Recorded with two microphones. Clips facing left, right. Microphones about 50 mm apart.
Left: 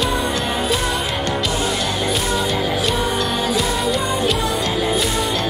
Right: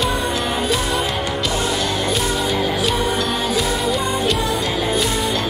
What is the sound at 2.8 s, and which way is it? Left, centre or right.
Music, centre.